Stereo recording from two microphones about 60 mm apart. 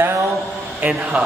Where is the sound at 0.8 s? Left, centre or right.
Right.